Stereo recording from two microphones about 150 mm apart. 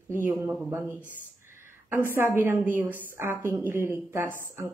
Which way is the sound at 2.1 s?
15° right (ahead or behind).